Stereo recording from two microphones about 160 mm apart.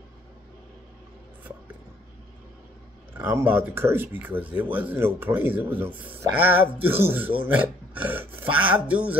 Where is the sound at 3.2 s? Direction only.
10° right (ahead or behind).